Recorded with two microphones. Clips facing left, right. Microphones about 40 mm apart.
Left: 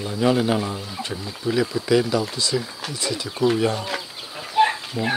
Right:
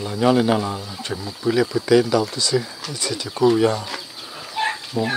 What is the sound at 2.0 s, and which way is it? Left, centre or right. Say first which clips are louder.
Speech: right 3 dB; centre.